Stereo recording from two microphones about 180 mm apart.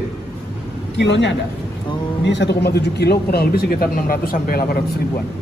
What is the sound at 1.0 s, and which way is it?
A man's voice, 80° left.